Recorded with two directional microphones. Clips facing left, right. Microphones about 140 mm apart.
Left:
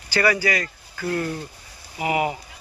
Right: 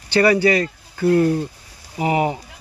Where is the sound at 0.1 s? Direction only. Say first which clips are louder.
Right 6 dB; 30° right (ahead or behind).